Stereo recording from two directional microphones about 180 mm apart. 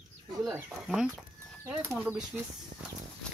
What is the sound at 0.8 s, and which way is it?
Speech, 5° right (ahead or behind).